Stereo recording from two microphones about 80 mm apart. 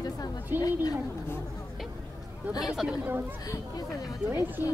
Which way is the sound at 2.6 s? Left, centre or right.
Centre.